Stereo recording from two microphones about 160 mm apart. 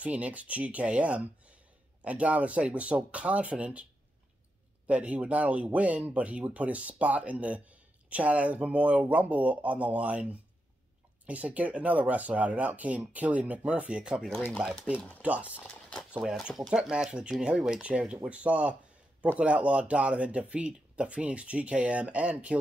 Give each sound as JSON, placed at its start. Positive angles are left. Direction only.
{"t": 0.0, "sound": "speech", "side_deg": -10}
{"t": 4.8, "sound": "speech", "side_deg": -10}
{"t": 15.5, "sound": "a sound", "side_deg": 5}
{"t": 16.1, "sound": "speech", "side_deg": -5}